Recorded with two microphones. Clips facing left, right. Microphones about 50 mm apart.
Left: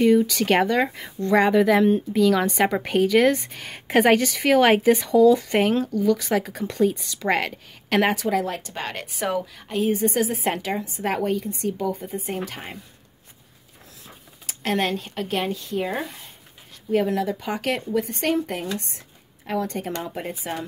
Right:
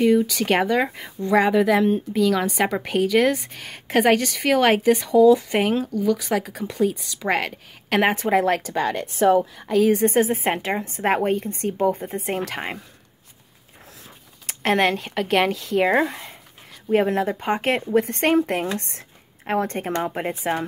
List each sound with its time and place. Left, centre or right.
0.0 s speech: centre
8.2 s speech: right
10.0 s speech: right
12.3 s speech: right
14.6 s speech: right
16.9 s speech: right